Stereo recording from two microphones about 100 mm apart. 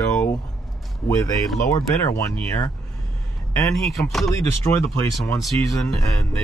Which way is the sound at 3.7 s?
Centre (ahead or behind).